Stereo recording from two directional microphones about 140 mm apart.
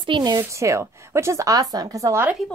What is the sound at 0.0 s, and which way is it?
Speech, 30° right (ahead or behind).